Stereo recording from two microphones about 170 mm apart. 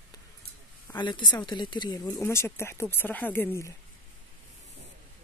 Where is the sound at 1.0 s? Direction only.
25° left (ahead or behind).